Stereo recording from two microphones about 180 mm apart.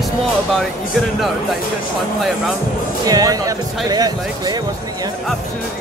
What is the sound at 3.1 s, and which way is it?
Speech, 20° right (ahead or behind).